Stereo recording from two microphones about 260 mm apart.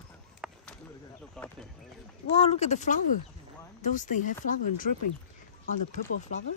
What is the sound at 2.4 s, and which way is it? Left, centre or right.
Speech, left.